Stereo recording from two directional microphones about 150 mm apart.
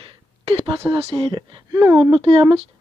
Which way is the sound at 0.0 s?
35° right (ahead or behind).